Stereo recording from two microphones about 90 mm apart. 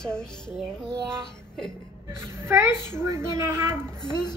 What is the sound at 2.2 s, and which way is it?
A child's voice, 30° right (ahead or behind).